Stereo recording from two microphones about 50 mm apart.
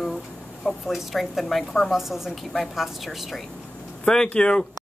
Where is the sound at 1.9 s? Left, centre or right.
Centre.